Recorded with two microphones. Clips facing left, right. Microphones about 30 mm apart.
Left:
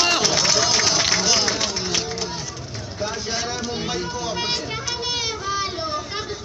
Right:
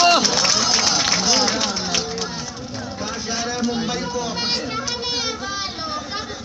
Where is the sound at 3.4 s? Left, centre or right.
Right.